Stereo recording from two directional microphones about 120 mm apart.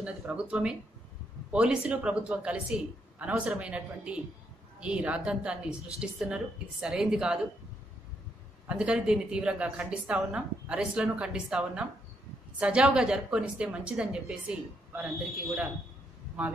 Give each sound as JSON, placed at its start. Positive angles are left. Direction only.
{"t": 0.0, "sound": "a woman's voice", "side_deg": -10}
{"t": 8.6, "sound": "a woman's voice", "side_deg": -10}